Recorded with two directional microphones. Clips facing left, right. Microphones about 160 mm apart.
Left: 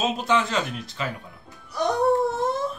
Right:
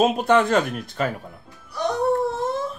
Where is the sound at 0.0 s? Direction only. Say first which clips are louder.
Right 6 dB; 55° right (ahead or behind).